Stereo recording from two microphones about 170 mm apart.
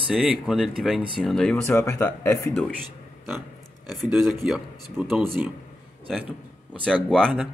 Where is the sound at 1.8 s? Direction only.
15° left (ahead or behind).